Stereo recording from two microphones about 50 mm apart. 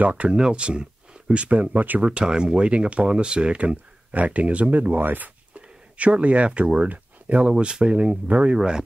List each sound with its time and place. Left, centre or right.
0.0 s speech: right
0.3 s speech: centre
2.0 s speech: centre; by 5.3 s right
5.5 s speech: right
8.5 s speech: centre